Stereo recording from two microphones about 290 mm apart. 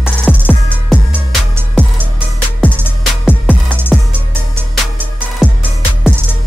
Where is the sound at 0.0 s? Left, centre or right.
Centre.